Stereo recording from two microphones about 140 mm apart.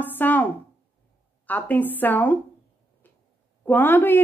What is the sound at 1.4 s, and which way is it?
Speech, 10° left (ahead or behind).